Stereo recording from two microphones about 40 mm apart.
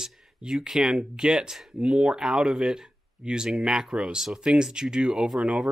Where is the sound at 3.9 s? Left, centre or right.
Right.